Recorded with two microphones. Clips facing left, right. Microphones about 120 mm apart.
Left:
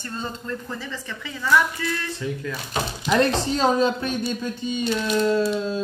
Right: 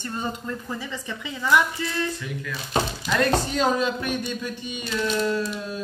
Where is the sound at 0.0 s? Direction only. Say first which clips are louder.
Right 2 dB; 15° right (ahead or behind).